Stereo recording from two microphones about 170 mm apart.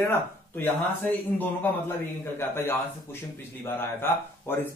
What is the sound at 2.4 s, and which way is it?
Speech, 15° left (ahead or behind).